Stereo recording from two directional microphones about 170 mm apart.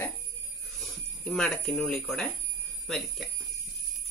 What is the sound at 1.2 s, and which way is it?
Speech, 5° left (ahead or behind).